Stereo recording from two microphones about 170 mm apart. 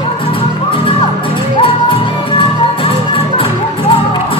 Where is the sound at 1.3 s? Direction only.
30° left (ahead or behind).